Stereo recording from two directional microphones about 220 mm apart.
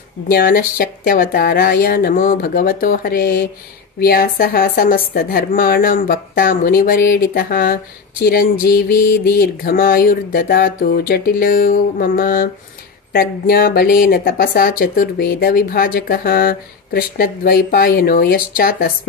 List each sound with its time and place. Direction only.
0.3 s a woman's voice: 40° left (ahead or behind)